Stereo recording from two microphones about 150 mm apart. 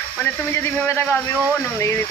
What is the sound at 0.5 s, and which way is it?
Speech, 20° left (ahead or behind).